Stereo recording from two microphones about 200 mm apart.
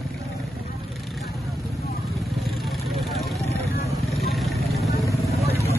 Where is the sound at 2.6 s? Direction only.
Centre (ahead or behind).